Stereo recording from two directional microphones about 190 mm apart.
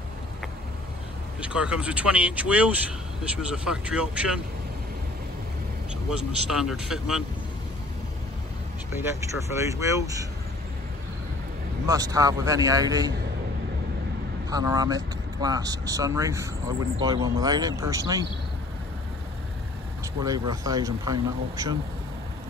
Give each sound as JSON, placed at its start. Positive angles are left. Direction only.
{"t": 1.4, "sound": "speech", "side_deg": -5}
{"t": 6.0, "sound": "speech", "side_deg": -5}
{"t": 9.0, "sound": "speech", "side_deg": -15}
{"t": 11.8, "sound": "speech", "side_deg": -20}
{"t": 14.5, "sound": "speech", "side_deg": -20}
{"t": 20.2, "sound": "speech", "side_deg": -20}